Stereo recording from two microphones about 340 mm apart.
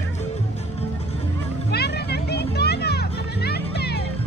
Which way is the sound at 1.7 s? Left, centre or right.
Left.